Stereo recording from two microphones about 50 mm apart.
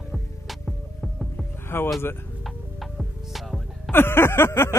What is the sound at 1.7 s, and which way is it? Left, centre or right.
Speech, left.